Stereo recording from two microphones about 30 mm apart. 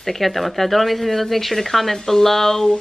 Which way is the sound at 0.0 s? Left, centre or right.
Centre.